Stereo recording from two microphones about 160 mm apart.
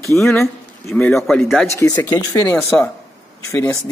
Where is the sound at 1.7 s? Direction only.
20° left (ahead or behind).